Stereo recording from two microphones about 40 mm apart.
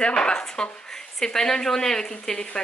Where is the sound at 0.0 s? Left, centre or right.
Left.